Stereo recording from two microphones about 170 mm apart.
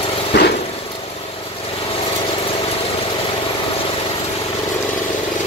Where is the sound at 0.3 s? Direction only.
90° left.